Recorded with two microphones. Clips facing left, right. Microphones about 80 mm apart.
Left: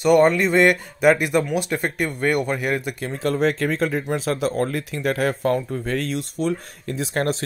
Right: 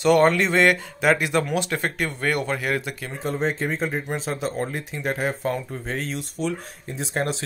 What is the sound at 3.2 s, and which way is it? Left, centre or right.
Speech, left.